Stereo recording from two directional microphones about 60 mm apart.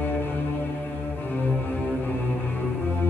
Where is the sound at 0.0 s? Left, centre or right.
Left.